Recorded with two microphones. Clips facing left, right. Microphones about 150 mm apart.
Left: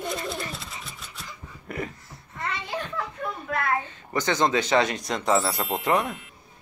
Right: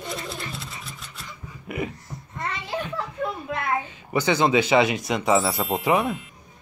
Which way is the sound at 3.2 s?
20° right (ahead or behind).